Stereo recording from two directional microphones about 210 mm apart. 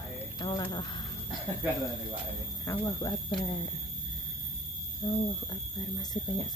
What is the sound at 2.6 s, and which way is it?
Speech, 15° left (ahead or behind).